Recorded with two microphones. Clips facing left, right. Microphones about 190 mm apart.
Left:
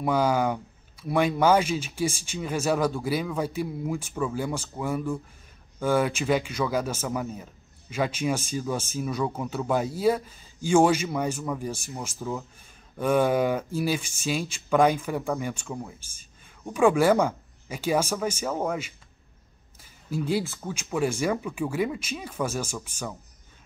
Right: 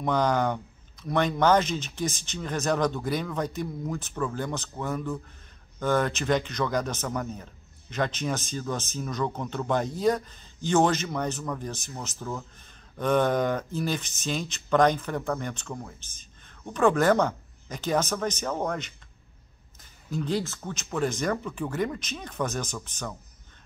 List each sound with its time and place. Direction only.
0.0 s speech: 5° left (ahead or behind)